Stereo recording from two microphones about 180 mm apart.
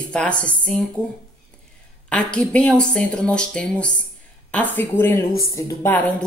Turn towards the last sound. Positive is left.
turn(degrees=10)  # may be behind; listen again after turning